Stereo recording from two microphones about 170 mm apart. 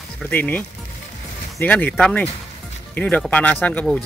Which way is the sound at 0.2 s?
10° left (ahead or behind).